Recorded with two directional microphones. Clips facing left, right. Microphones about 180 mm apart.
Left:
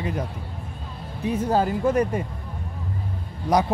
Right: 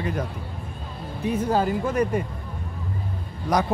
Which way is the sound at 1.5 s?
30° left (ahead or behind).